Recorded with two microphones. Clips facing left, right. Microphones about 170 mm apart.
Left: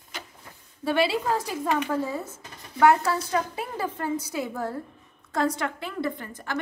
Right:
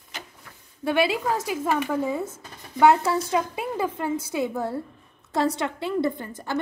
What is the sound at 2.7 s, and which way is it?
A woman's voice, 20° right (ahead or behind).